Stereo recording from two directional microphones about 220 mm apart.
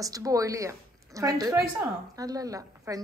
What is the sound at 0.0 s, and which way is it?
A woman's voice, 15° right (ahead or behind).